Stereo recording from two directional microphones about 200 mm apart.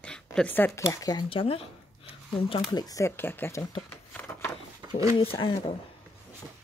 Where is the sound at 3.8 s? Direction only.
10° left (ahead or behind).